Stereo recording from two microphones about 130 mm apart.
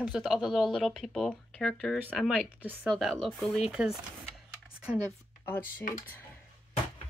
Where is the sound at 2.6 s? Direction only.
15° right (ahead or behind).